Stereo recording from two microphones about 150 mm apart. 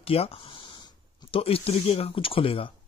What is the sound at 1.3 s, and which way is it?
Speech, 40° left (ahead or behind).